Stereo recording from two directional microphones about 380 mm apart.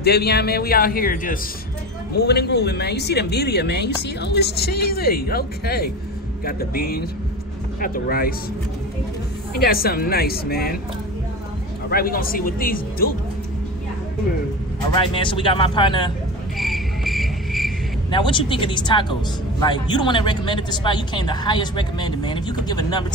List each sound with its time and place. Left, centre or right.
0.0 s speech: left
9.5 s speech: left
11.9 s speech: left
15.1 s a woman's voice: centre
16.5 s cricket: centre
18.1 s a woman's voice: centre